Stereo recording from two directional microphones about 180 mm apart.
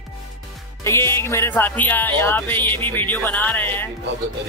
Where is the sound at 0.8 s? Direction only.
15° left (ahead or behind).